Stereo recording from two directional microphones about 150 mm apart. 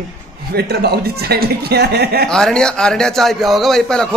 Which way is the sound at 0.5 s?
90° right.